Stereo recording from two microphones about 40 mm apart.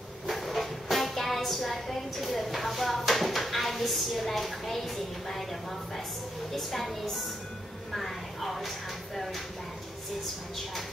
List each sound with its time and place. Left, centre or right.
0.3 s a woman's voice: centre